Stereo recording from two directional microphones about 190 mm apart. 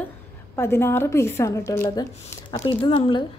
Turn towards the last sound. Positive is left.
turn(degrees=25)  # may be behind; listen again after turning